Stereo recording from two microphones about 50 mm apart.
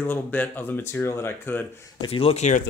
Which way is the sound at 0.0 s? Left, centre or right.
Left.